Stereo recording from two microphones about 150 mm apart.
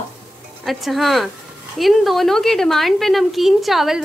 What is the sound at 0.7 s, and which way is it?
A woman's voice, centre (ahead or behind).